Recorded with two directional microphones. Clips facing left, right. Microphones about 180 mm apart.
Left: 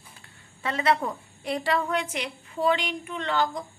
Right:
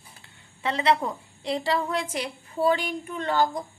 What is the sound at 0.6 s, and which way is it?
A woman's voice, 25° right (ahead or behind).